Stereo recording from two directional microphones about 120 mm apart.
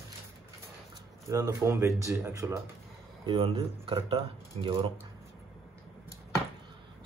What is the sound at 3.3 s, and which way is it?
Speech, 45° right (ahead or behind).